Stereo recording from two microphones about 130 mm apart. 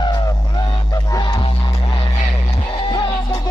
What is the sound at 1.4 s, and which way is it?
Music, 45° left (ahead or behind).